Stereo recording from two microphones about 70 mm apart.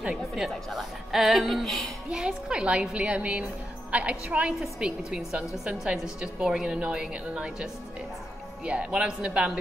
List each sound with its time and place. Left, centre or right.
0.0 s a woman's voice: centre
2.0 s a woman's voice: centre